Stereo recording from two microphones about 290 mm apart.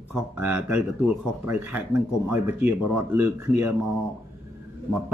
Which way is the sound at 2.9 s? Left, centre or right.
Centre.